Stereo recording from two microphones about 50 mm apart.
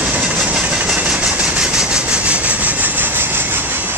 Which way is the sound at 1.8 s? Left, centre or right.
Centre.